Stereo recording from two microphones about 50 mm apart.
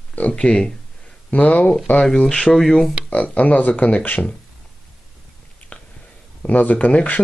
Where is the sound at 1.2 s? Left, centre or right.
Left.